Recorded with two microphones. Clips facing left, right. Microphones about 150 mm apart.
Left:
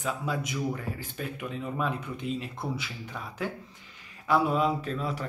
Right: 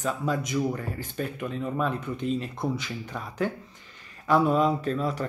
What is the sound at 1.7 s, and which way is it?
Speech, 5° left (ahead or behind).